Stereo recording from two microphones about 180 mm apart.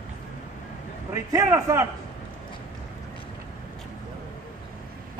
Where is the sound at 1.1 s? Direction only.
15° right (ahead or behind).